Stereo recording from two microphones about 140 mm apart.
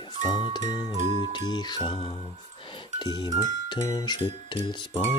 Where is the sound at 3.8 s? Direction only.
30° left (ahead or behind).